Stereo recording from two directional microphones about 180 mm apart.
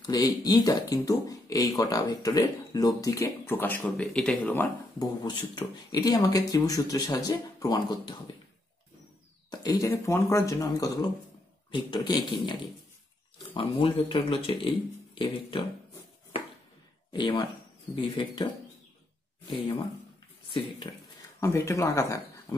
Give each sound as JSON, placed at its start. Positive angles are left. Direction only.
{"t": 0.0, "sound": "speech", "side_deg": 20}
{"t": 4.9, "sound": "speech", "side_deg": 20}
{"t": 9.5, "sound": "speech", "side_deg": 20}
{"t": 13.6, "sound": "speech", "side_deg": 30}
{"t": 17.1, "sound": "speech", "side_deg": 25}
{"t": 19.5, "sound": "speech", "side_deg": 25}
{"t": 21.4, "sound": "speech", "side_deg": 15}